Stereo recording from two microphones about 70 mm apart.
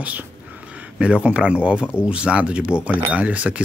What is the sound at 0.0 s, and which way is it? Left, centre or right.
Speech, right.